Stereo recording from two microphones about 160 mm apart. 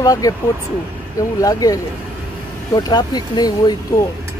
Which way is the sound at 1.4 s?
20° left (ahead or behind).